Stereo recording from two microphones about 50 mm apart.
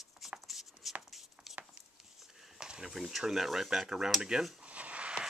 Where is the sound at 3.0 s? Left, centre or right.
Centre.